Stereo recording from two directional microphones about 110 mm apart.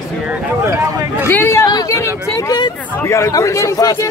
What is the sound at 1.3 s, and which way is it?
A man's voice, 25° left (ahead or behind).